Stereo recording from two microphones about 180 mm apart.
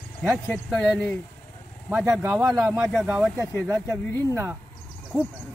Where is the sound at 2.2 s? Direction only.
15° right (ahead or behind).